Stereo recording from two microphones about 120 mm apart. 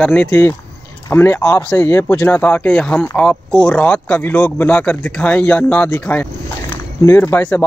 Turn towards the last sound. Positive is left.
turn(degrees=20)  # may be behind; listen again after turning